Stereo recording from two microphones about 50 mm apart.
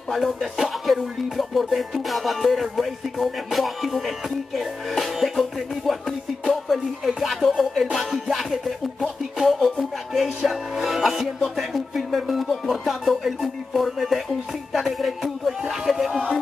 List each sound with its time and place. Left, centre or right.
0.1 s music: centre